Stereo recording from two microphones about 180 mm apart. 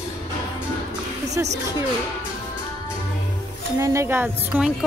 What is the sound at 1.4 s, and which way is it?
Speech, 10° right (ahead or behind).